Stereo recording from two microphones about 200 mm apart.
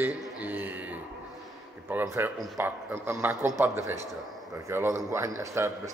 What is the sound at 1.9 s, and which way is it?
Speech, 10° right (ahead or behind).